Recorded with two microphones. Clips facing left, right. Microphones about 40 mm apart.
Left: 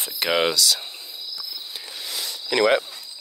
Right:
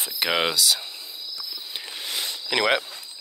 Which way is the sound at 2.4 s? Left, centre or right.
Centre.